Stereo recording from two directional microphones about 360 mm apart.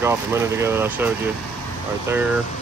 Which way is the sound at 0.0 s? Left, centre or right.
Centre.